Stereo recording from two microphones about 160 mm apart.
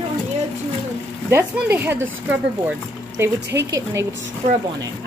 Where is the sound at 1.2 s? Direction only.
15° right (ahead or behind).